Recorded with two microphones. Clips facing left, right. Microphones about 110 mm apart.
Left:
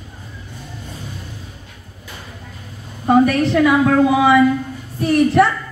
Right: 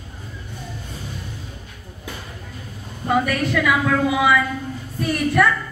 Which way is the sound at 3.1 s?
35° left (ahead or behind).